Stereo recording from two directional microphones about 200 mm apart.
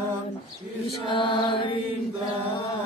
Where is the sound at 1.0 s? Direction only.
25° left (ahead or behind).